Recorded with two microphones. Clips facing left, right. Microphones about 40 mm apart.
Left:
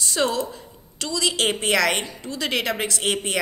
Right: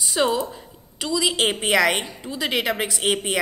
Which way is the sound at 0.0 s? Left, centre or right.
Centre.